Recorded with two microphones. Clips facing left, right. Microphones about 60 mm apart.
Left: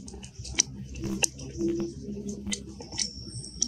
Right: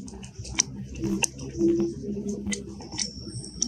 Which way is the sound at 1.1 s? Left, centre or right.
Right.